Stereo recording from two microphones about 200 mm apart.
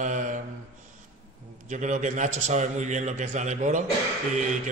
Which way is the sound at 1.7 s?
40° right (ahead or behind).